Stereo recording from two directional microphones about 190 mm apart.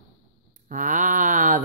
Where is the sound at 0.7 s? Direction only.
40° right (ahead or behind).